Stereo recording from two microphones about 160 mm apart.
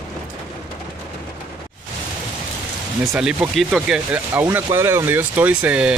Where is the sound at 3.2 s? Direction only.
5° right (ahead or behind).